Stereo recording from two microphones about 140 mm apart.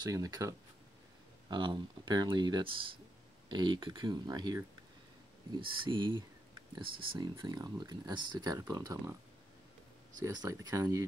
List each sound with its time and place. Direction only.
0.0 s speech: 25° right (ahead or behind)
5.8 s speech: 35° right (ahead or behind)
10.2 s speech: 25° right (ahead or behind)